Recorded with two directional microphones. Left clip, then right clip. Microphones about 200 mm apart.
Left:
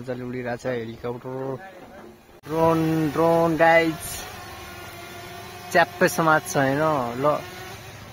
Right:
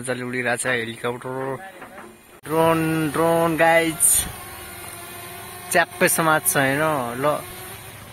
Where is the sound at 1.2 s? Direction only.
10° right (ahead or behind).